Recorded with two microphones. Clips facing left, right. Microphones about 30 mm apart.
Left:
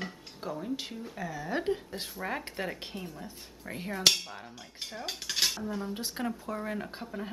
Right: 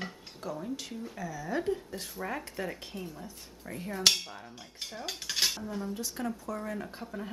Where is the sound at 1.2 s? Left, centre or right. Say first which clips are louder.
Left 1 dB; left.